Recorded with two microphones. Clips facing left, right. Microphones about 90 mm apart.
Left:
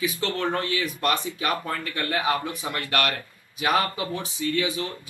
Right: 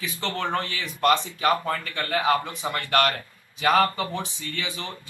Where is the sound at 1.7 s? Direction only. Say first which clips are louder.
Right 1 dB; 15° left (ahead or behind).